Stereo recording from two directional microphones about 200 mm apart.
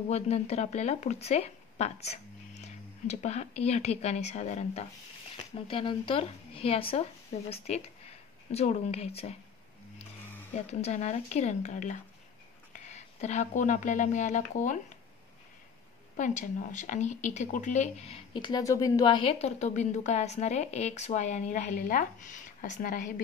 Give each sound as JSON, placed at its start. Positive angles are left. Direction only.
{"t": 0.1, "sound": "speech", "side_deg": 35}
{"t": 10.5, "sound": "a woman's voice", "side_deg": 35}
{"t": 16.2, "sound": "speech", "side_deg": 40}